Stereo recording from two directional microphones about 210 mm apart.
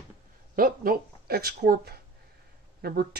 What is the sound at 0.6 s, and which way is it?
Speech, 45° right (ahead or behind).